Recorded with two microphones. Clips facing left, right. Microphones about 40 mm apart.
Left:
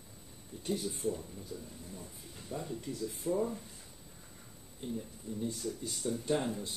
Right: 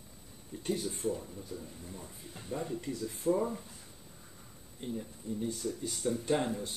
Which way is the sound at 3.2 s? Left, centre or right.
Right.